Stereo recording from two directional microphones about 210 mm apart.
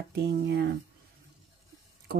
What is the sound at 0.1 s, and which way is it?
Speech, 50° right (ahead or behind).